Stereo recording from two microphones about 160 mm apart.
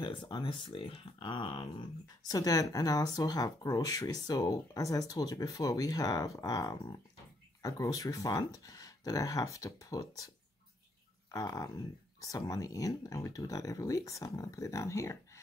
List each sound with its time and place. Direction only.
0.0 s speech: 30° left (ahead or behind)